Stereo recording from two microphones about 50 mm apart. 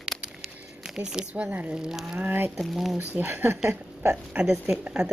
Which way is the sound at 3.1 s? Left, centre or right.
Right.